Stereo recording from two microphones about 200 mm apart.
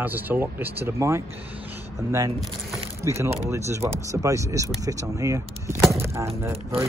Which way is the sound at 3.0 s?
15° right (ahead or behind).